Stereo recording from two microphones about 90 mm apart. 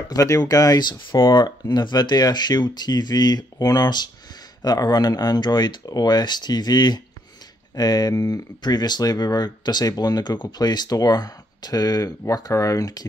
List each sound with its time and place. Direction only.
0.1 s speech: 40° left (ahead or behind)